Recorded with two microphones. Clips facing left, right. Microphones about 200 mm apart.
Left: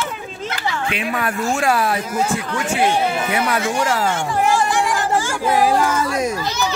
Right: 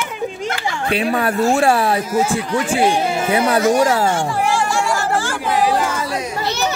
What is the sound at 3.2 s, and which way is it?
Speech, 30° right (ahead or behind).